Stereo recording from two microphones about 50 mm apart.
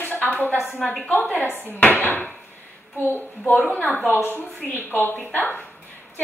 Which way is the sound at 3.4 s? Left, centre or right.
Left.